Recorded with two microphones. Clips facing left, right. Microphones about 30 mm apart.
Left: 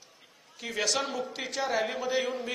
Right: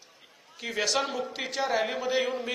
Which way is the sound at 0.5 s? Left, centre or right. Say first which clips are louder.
Right 2 dB; centre.